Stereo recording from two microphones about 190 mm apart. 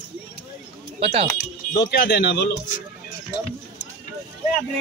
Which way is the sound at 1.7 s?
65° left (ahead or behind).